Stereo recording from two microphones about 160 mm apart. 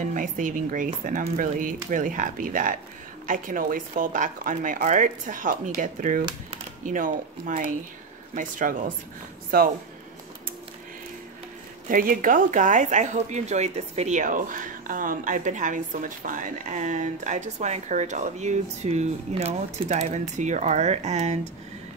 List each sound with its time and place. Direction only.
0.0 s speech: 55° right (ahead or behind)
9.5 s speech: 65° right (ahead or behind)
11.9 s speech: 60° right (ahead or behind); by 21.4 s 45° right (ahead or behind)